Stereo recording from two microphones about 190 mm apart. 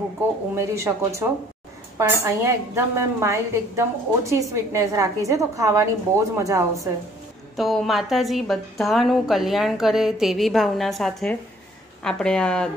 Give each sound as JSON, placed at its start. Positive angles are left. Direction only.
{"t": 0.6, "sound": "a woman's voice", "side_deg": -15}
{"t": 7.5, "sound": "a woman's voice", "side_deg": 0}